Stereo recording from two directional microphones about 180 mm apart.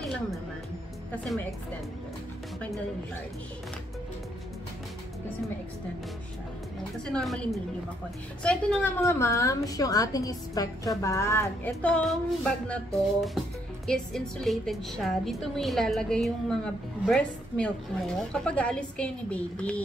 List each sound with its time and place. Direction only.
7.1 s a woman's voice: 5° left (ahead or behind)
9.0 s a woman's voice: 15° left (ahead or behind)